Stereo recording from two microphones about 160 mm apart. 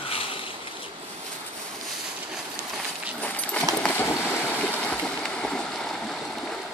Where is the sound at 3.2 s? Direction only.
10° left (ahead or behind).